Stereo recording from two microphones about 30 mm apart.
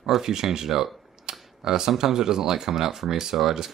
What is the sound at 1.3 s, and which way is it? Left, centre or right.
Camera, centre.